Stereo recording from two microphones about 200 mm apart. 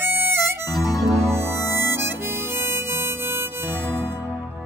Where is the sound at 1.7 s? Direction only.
10° right (ahead or behind).